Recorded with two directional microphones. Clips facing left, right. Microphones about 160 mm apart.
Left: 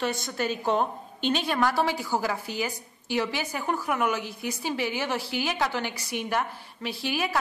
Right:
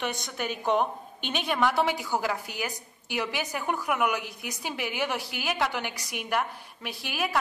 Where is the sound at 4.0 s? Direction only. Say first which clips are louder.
Left 1 dB; 15° right (ahead or behind).